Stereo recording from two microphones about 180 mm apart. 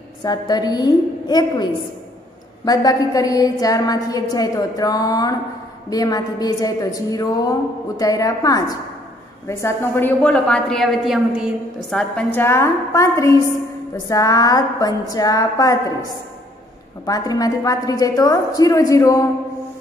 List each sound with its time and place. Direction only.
0.2 s a woman's voice: 25° left (ahead or behind)
17.0 s a woman's voice: 20° left (ahead or behind)